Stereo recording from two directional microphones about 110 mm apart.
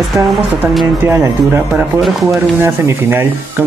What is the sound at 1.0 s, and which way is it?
Speech, 20° right (ahead or behind).